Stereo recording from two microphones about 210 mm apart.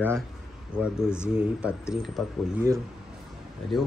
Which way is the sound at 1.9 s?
Centre (ahead or behind).